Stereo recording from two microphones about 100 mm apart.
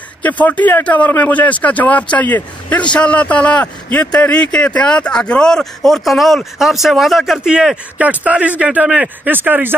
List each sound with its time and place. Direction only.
0.2 s a man's voice: 15° left (ahead or behind); by 9.8 s 20° right (ahead or behind)